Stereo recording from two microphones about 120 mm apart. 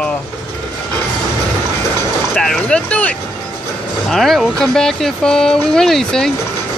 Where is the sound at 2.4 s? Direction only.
5° left (ahead or behind).